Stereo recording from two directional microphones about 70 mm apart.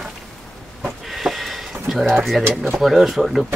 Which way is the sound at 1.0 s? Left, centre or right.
Centre.